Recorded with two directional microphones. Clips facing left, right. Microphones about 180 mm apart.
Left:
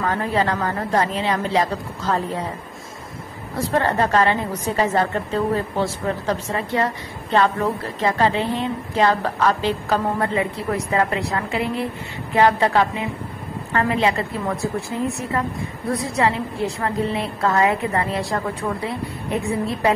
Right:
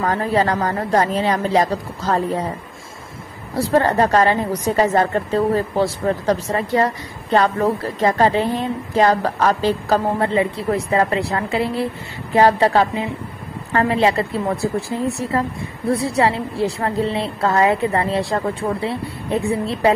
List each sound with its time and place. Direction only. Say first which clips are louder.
0.1 s a woman's voice: right 3 dB; 40° right (ahead or behind)
3.5 s a woman's voice: right 4 dB; 35° right (ahead or behind)